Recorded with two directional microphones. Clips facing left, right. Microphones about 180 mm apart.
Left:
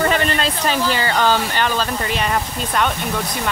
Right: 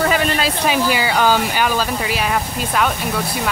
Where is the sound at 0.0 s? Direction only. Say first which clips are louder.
Right 1 dB; 5° right (ahead or behind).